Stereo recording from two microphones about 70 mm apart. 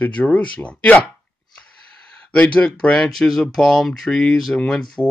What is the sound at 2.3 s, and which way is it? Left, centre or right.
Speech, centre.